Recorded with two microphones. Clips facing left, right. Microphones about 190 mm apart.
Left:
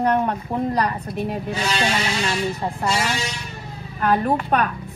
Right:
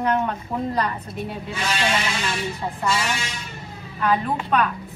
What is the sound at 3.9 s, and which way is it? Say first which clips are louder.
Speech: left 3 dB; 50° left (ahead or behind).